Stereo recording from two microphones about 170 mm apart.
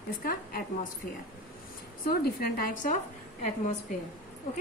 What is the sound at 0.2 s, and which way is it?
Speech, 60° left (ahead or behind).